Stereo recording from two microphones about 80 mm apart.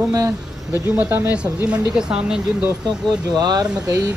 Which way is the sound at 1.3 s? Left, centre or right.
Centre.